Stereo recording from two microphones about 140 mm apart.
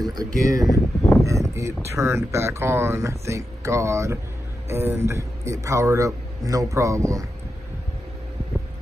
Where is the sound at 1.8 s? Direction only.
20° right (ahead or behind).